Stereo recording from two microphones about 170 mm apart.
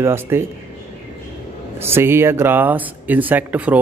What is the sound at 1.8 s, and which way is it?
Speech, 15° right (ahead or behind).